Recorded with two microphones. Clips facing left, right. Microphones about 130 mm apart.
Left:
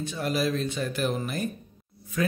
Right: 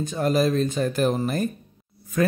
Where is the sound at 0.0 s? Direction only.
45° right (ahead or behind).